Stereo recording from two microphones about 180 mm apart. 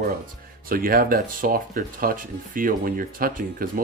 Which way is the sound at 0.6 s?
55° right (ahead or behind).